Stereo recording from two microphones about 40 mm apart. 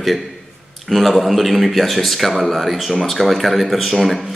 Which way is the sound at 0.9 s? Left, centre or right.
Centre.